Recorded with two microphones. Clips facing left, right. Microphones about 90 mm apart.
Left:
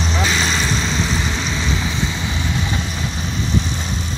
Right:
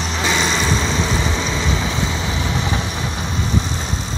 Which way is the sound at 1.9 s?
90° right.